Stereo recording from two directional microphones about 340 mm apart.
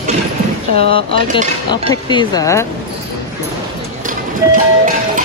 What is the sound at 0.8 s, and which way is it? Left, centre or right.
Music, right.